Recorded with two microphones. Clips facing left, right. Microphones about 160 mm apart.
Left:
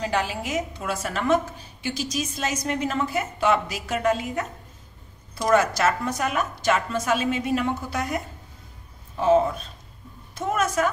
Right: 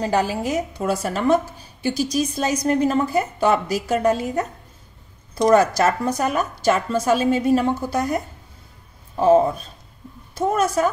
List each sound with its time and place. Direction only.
0.0 s a woman's voice: 40° right (ahead or behind)